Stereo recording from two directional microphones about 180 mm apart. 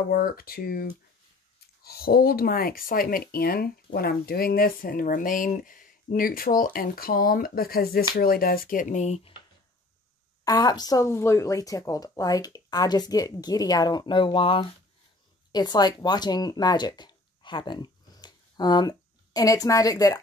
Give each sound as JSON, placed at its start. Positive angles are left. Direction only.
{"t": 0.1, "sound": "speech", "side_deg": 55}
{"t": 10.4, "sound": "speech", "side_deg": 20}